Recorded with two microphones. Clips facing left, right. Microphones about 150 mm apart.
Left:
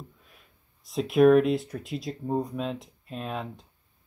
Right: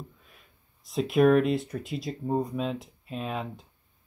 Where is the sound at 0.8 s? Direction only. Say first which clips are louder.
Left 2 dB; centre (ahead or behind).